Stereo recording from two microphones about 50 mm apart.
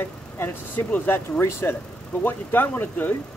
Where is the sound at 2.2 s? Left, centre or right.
Left.